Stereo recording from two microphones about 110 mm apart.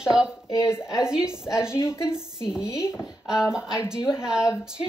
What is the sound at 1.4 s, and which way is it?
Speech, 5° right (ahead or behind).